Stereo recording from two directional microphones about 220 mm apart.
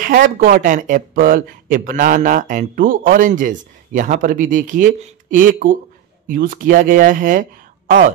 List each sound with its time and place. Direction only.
0.0 s speech: 40° right (ahead or behind)